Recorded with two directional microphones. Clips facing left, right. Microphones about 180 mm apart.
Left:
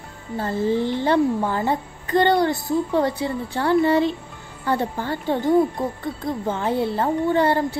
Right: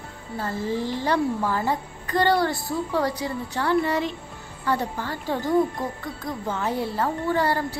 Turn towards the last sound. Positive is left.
turn(degrees=25)  # may be behind; listen again after turning